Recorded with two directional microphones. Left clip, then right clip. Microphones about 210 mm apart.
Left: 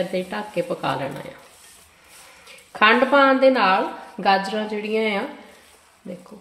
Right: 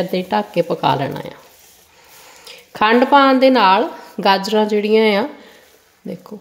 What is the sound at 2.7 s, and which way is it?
A woman's voice, 50° right (ahead or behind).